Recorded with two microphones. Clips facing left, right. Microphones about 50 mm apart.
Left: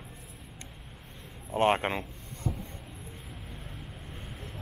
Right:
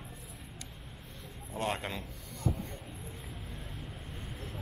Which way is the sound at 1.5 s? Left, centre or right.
Left.